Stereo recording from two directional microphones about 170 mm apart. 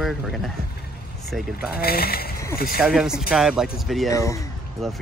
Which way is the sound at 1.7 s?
65° left (ahead or behind).